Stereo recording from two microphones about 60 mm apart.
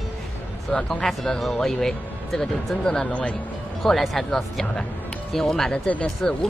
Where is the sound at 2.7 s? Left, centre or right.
Centre.